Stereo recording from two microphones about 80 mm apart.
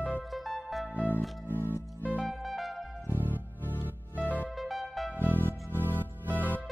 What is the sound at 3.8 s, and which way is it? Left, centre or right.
Music, left.